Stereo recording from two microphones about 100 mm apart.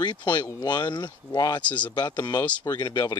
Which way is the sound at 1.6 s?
15° left (ahead or behind).